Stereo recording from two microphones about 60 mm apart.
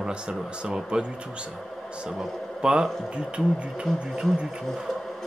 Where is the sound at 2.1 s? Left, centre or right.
Centre.